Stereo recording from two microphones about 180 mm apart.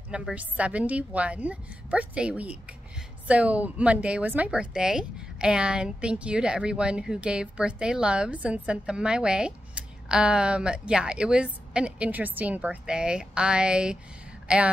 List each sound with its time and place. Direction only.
0.1 s a woman's voice: 5° right (ahead or behind)